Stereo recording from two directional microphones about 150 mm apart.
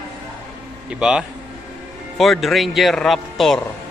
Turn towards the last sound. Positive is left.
turn(degrees=0)  # may be behind; listen again after turning